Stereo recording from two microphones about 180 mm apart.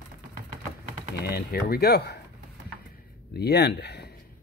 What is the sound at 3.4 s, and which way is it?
Speech, 65° left (ahead or behind).